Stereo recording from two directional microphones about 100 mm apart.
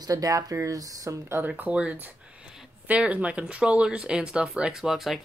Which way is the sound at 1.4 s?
15° right (ahead or behind).